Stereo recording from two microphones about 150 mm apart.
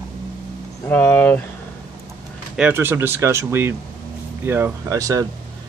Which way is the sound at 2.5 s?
10° right (ahead or behind).